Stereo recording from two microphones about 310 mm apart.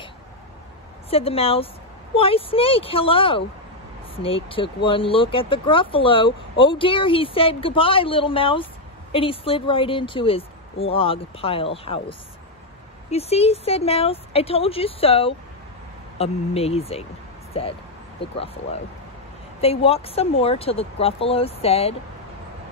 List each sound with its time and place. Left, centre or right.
1.1 s a woman's voice: centre